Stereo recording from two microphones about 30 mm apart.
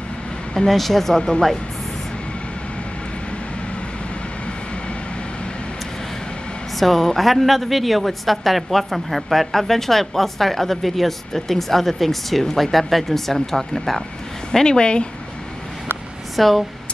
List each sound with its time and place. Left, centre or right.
0.7 s speech: centre
6.8 s a woman's voice: centre
14.6 s speech: left
16.3 s a woman's voice: centre